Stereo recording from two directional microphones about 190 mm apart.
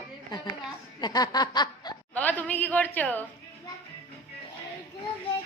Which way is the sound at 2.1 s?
10° left (ahead or behind).